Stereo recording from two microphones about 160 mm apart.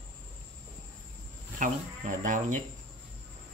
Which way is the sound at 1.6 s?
55° right (ahead or behind).